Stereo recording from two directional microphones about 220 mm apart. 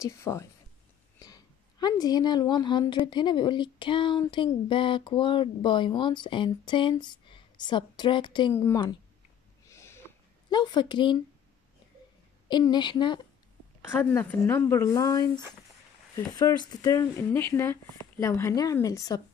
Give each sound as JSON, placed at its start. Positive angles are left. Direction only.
{"t": 0.0, "sound": "a woman's voice", "side_deg": 15}
{"t": 9.7, "sound": "a sound", "side_deg": 10}
{"t": 12.4, "sound": "a woman's voice", "side_deg": 20}